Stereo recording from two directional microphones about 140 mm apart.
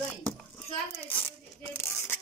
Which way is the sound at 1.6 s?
15° left (ahead or behind).